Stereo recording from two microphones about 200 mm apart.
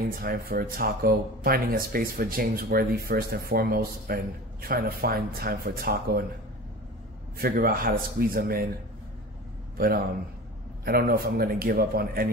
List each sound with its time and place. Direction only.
0.2 s speech: 45° right (ahead or behind)
7.3 s speech: 45° right (ahead or behind)
9.8 s a man's voice: 50° right (ahead or behind)